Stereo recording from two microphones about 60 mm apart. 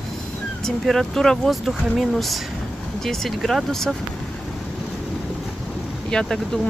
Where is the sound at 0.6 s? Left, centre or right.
Centre.